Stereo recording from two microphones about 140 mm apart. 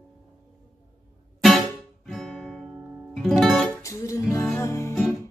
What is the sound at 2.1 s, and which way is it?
Guitar, centre (ahead or behind).